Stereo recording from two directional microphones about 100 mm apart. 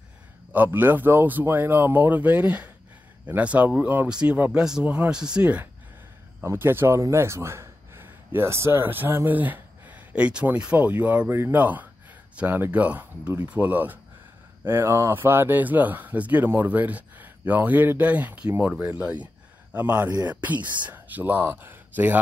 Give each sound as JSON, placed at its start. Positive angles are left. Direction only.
{"t": 0.7, "sound": "speech", "side_deg": -20}
{"t": 6.4, "sound": "speech", "side_deg": -25}